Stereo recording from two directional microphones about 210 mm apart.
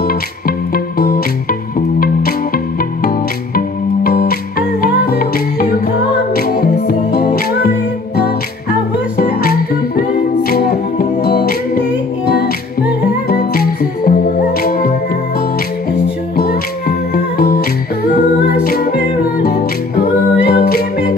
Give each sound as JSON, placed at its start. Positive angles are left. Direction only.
{"t": 0.7, "sound": "music", "side_deg": 45}
{"t": 3.5, "sound": "music", "side_deg": 45}
{"t": 9.2, "sound": "music", "side_deg": 45}
{"t": 13.3, "sound": "music", "side_deg": 45}
{"t": 16.3, "sound": "music", "side_deg": 45}
{"t": 20.4, "sound": "music", "side_deg": 45}